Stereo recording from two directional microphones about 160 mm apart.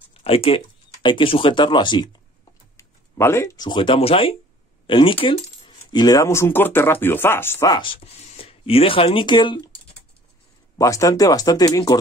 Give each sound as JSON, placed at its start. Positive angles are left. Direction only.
{"t": 0.1, "sound": "a sound", "side_deg": 35}
{"t": 1.0, "sound": "speech", "side_deg": 35}
{"t": 2.8, "sound": "speech", "side_deg": 15}
{"t": 10.8, "sound": "speech", "side_deg": 20}